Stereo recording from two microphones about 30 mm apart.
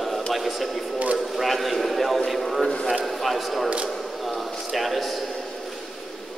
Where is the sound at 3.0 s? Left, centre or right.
Centre.